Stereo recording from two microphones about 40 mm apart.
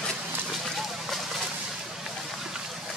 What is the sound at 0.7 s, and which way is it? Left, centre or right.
Vehicle, centre.